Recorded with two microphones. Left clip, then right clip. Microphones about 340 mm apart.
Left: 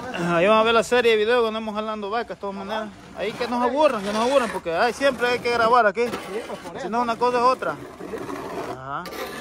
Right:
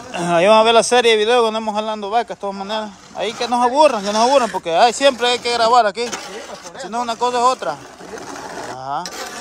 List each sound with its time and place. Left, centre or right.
0.1 s speech: centre